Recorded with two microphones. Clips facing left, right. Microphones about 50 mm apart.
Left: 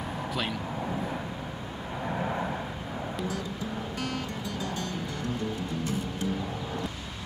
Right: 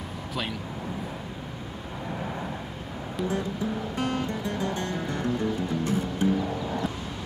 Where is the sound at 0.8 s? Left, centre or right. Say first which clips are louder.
Left 2 dB; centre.